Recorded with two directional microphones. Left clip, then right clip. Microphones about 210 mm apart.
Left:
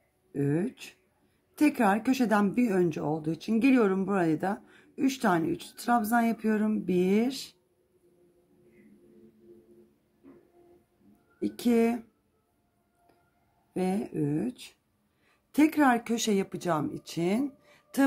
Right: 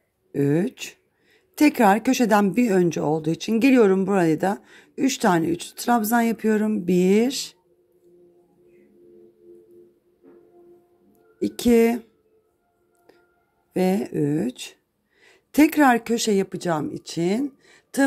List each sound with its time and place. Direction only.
0.3 s a woman's voice: 30° right (ahead or behind)
11.3 s a woman's voice: 30° right (ahead or behind)
13.7 s a woman's voice: 30° right (ahead or behind)